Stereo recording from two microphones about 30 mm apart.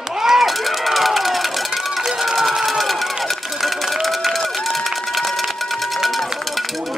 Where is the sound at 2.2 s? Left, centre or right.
Centre.